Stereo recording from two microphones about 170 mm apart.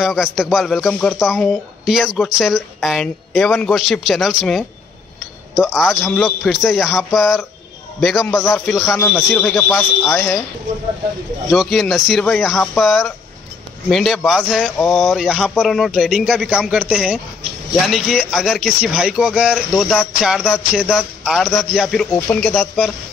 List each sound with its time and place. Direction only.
0.0 s speech: centre (ahead or behind)
9.7 s a man's voice: 15° left (ahead or behind)
11.5 s speech: centre (ahead or behind)